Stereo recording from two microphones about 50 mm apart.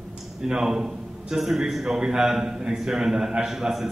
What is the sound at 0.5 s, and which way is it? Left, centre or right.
A man's voice, centre.